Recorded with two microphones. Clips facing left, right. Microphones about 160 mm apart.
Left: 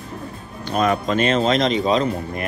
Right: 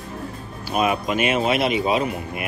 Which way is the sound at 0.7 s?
10° right (ahead or behind).